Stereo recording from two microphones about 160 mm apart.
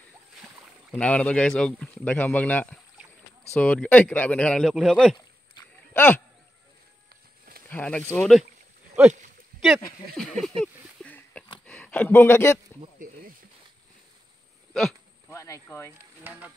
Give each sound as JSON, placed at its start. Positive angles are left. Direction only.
{"t": 0.9, "sound": "speech", "side_deg": 10}
{"t": 5.9, "sound": "speech", "side_deg": 10}
{"t": 7.6, "sound": "speech", "side_deg": 5}
{"t": 9.5, "sound": "a sound", "side_deg": -65}
{"t": 10.1, "sound": "speech", "side_deg": 0}
{"t": 10.6, "sound": "a sound", "side_deg": 10}
{"t": 11.6, "sound": "speech", "side_deg": 5}
{"t": 14.7, "sound": "speech", "side_deg": 0}
{"t": 15.2, "sound": "speech", "side_deg": 20}
{"t": 16.3, "sound": "frying", "side_deg": -10}